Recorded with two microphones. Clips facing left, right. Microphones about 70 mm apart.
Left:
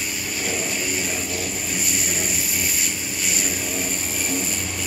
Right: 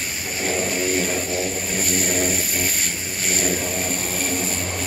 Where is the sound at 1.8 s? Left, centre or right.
Right.